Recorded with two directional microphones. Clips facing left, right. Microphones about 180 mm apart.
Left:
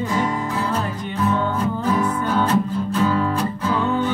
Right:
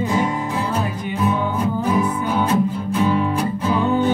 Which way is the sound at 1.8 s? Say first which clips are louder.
Even; 15° right (ahead or behind).